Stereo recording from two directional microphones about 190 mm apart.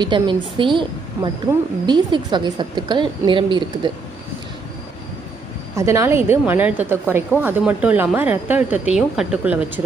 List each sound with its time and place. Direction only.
0.0 s a woman's voice: 25° right (ahead or behind)
5.8 s a woman's voice: 15° right (ahead or behind)